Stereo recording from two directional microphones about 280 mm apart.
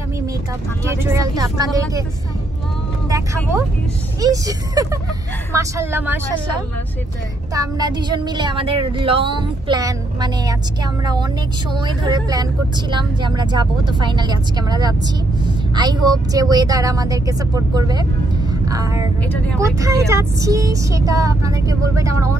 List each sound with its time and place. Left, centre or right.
0.8 s speech: centre
4.2 s speech: centre
7.5 s speech: centre
18.5 s vehicle: centre
19.6 s speech: centre